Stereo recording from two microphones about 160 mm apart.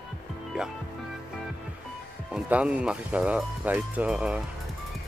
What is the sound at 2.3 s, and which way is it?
Speech, 5° right (ahead or behind).